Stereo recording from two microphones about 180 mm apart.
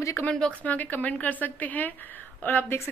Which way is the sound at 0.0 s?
15° left (ahead or behind).